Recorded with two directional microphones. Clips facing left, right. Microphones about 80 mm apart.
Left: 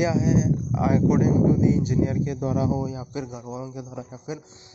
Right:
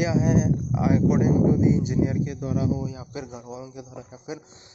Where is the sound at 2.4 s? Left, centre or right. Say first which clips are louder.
Left 3 dB; left.